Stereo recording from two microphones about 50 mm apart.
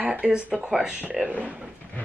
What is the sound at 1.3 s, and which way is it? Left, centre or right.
Speech, right.